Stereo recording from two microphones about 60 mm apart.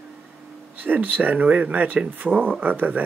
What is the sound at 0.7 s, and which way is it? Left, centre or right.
Speech, right.